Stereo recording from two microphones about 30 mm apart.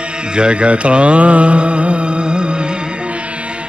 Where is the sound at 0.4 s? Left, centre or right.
Right.